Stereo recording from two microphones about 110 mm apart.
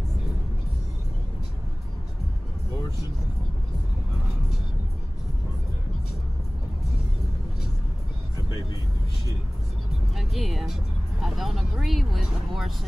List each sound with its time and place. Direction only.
10.1 s music: centre (ahead or behind)